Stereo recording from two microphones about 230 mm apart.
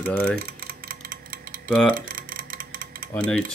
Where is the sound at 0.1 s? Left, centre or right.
Centre.